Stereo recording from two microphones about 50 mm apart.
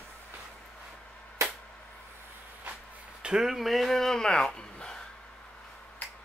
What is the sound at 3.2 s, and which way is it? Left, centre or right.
Speech, centre.